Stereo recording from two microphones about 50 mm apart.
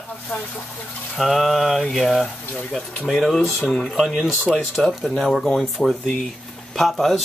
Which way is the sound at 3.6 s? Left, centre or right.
Centre.